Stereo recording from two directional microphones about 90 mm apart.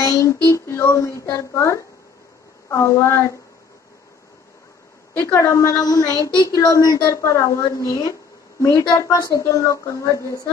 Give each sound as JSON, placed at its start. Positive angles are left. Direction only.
{"t": 0.0, "sound": "child singing", "side_deg": 40}
{"t": 0.8, "sound": "a woman's voice", "side_deg": 35}
{"t": 5.1, "sound": "a woman's voice", "side_deg": 30}